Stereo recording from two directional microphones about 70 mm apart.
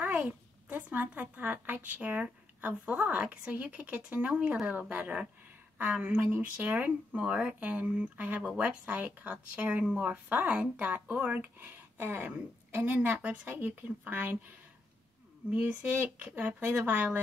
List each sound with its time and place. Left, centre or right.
0.0 s a woman's voice: right
15.5 s a woman's voice: right